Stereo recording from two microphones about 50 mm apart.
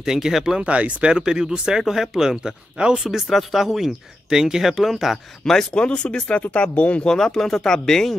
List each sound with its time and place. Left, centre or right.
0.0 s speech: centre
0.6 s speech: right
3.0 s speech: centre
5.7 s speech: left
7.1 s speech: centre